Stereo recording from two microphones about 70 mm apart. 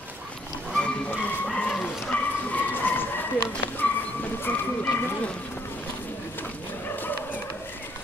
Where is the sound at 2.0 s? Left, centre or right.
Left.